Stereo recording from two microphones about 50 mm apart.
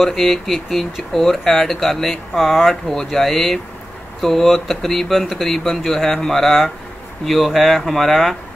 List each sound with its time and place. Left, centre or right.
0.0 s speech: centre